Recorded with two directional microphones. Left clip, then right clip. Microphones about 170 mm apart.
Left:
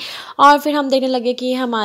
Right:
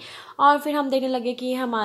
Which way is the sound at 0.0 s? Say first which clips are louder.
Left 7 dB; 40° left (ahead or behind).